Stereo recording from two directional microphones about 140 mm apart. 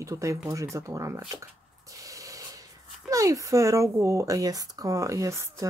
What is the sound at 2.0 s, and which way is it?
Spray, 25° right (ahead or behind).